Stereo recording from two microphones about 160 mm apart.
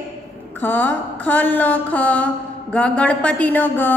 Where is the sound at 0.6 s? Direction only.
10° left (ahead or behind).